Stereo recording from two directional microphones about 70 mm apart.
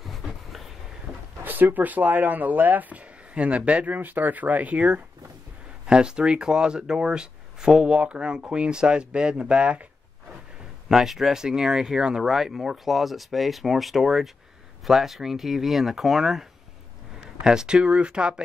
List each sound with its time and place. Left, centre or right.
0.0 s a sound: centre
1.4 s speech: right
10.9 s speech: centre